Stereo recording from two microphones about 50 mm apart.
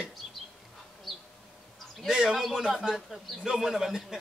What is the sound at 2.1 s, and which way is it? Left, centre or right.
Speech, centre.